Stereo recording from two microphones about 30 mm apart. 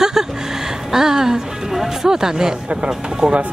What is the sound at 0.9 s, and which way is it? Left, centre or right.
A woman's voice, centre.